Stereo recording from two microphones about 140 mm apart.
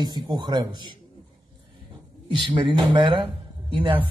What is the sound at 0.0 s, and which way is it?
Speech, 30° right (ahead or behind).